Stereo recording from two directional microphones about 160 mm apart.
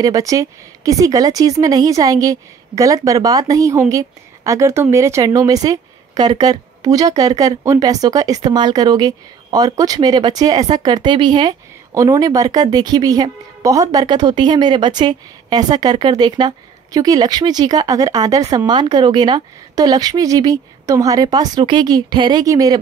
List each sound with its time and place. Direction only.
0.0 s a woman's voice: 20° right (ahead or behind)